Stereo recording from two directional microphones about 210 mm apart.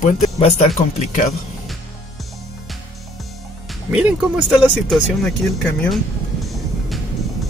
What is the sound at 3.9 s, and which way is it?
Speech, 5° right (ahead or behind).